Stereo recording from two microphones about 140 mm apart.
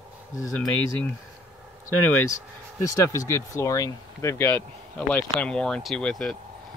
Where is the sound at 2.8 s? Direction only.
20° left (ahead or behind).